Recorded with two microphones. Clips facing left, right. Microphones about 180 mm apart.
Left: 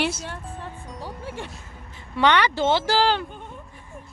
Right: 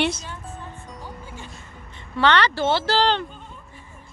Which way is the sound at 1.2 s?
70° left (ahead or behind).